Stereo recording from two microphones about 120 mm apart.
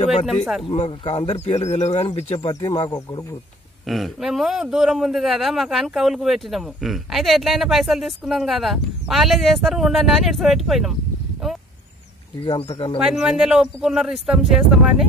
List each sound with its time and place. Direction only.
0.7 s speech: 55° left (ahead or behind)
2.3 s speech: 40° left (ahead or behind)
3.8 s a man's voice: centre (ahead or behind)
12.4 s speech: 50° left (ahead or behind)
13.0 s a man's voice: 5° right (ahead or behind)